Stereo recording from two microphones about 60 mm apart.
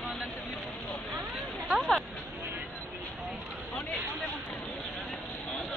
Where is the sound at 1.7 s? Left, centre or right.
Centre.